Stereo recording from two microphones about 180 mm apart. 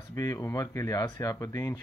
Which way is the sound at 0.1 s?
20° left (ahead or behind).